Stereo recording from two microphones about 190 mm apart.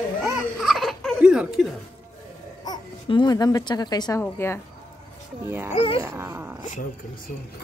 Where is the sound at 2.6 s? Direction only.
20° left (ahead or behind).